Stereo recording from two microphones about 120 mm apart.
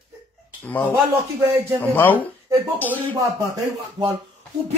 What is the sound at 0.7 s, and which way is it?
A man's voice, 15° left (ahead or behind).